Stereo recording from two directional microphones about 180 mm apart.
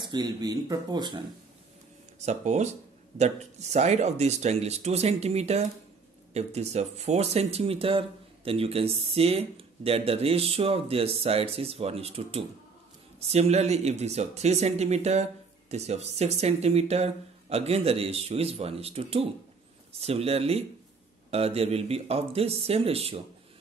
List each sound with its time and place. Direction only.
0.1 s speech: 20° right (ahead or behind)
2.1 s speech: 40° right (ahead or behind)